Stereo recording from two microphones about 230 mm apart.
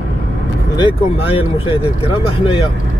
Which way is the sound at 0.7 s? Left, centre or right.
Left.